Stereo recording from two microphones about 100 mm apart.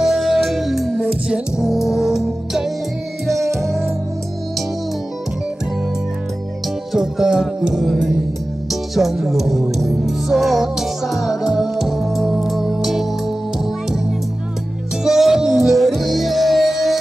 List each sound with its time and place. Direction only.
0.0 s music: 5° right (ahead or behind)
3.3 s music: 30° right (ahead or behind)
6.9 s music: 5° right (ahead or behind)